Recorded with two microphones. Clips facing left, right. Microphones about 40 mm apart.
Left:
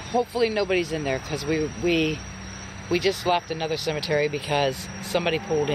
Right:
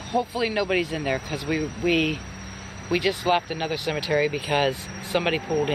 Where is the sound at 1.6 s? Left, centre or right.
Right.